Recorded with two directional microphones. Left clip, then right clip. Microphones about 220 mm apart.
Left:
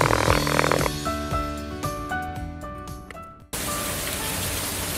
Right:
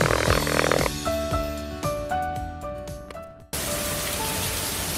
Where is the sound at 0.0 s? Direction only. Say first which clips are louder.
Left 1 dB; centre (ahead or behind).